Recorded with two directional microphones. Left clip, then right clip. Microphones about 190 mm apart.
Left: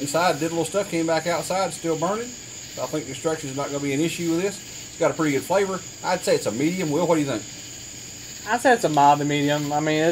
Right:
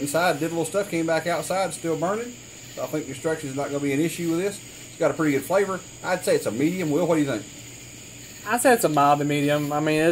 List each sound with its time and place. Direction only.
0.1 s speech: 5° right (ahead or behind)
8.5 s speech: 40° right (ahead or behind)